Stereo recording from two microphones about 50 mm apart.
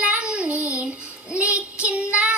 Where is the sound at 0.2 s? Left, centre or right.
Right.